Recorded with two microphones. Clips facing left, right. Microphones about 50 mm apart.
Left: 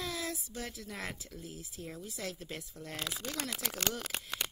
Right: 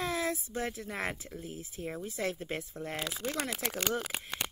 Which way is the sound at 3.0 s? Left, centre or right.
Centre.